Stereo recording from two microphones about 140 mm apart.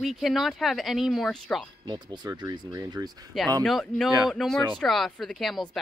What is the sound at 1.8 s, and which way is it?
Speech, 30° right (ahead or behind).